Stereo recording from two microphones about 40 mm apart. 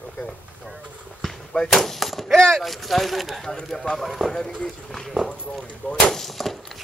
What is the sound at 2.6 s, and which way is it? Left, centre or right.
Speech, centre.